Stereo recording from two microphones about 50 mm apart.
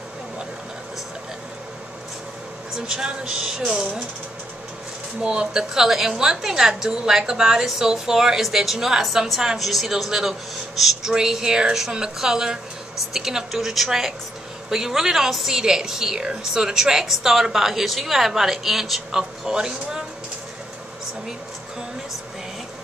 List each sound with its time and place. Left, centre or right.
2.9 s a woman's voice: centre
5.2 s a woman's voice: centre